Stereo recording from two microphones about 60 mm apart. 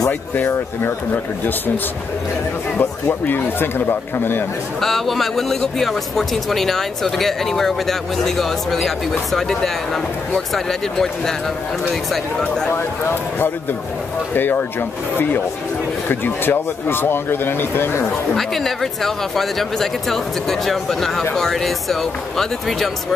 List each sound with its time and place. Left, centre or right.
0.5 s speech: left
2.8 s speech: left
4.7 s speech: centre
12.7 s speech: left
18.3 s speech: centre